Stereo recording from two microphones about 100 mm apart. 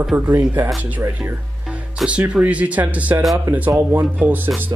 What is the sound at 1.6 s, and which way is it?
Music, 10° right (ahead or behind).